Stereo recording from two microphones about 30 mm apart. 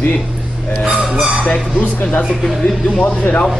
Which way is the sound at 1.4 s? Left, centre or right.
Left.